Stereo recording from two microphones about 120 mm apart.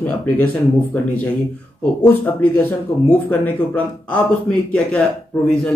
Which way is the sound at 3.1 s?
10° left (ahead or behind).